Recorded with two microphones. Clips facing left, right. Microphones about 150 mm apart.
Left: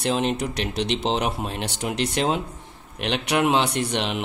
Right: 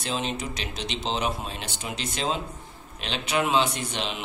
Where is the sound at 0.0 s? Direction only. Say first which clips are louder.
Left 7 dB; 65° left (ahead or behind).